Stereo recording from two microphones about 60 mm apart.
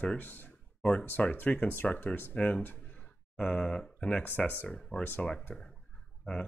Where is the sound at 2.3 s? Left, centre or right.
Centre.